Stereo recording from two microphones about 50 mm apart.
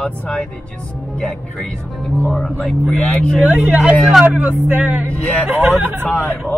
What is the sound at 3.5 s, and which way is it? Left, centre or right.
Speech, right.